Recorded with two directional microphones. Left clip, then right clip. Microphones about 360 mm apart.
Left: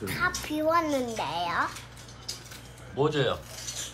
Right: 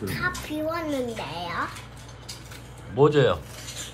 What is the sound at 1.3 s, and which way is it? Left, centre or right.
Speech, centre.